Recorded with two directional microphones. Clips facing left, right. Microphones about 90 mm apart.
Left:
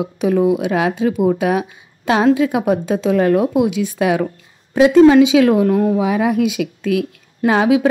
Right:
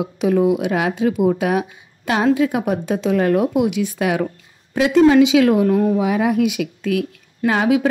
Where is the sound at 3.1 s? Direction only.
25° left (ahead or behind).